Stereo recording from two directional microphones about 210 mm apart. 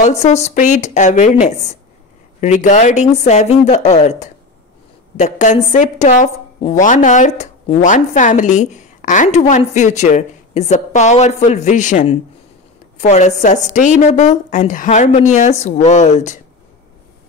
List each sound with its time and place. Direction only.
0.0 s a woman's voice: 30° left (ahead or behind)